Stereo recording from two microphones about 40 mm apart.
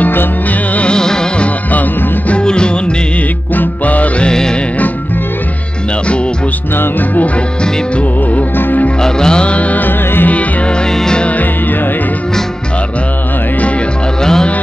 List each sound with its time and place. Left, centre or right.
0.8 s music: centre
1.7 s music: left
2.3 s music: left
3.5 s music: left
4.3 s music: centre
6.7 s music: left
7.3 s music: left
8.5 s music: left
9.0 s music: centre; by 9.8 s left
9.8 s music: left
10.3 s music: left
10.7 s music: left
14.2 s music: centre